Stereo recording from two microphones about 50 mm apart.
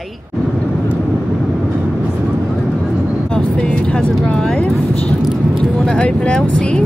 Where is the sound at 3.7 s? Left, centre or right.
Centre.